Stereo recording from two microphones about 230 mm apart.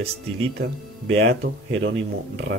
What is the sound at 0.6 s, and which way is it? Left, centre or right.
Speech, right.